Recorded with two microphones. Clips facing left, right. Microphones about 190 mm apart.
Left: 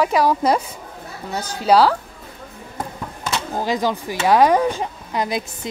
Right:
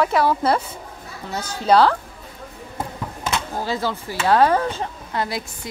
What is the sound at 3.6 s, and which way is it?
Speech, 15° left (ahead or behind).